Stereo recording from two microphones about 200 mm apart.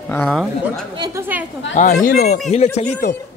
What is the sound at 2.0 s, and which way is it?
Speech, 45° left (ahead or behind).